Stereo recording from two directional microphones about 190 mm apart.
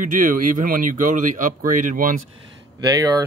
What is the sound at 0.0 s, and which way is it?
Speech, 45° right (ahead or behind).